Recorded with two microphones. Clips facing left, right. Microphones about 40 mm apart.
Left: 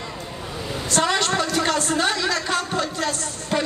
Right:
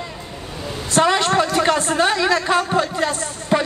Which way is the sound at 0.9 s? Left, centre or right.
Centre.